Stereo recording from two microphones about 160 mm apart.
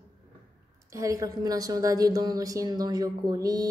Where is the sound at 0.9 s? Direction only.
20° right (ahead or behind).